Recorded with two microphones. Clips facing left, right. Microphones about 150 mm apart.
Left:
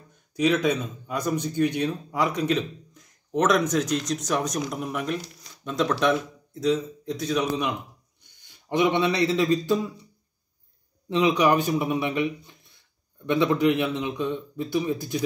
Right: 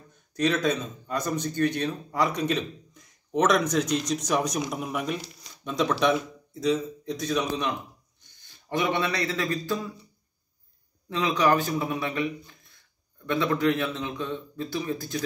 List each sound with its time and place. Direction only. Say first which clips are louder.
0.3 s speech: left 2 dB; 10° left (ahead or behind)
8.4 s a man's voice: left 5 dB; 15° left (ahead or behind)
11.1 s a man's voice: left 3 dB; 20° left (ahead or behind)